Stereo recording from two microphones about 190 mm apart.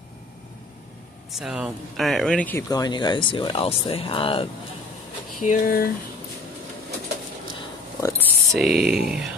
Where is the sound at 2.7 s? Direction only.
20° left (ahead or behind).